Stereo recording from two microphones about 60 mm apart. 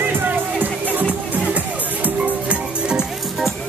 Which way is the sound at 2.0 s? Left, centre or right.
Right.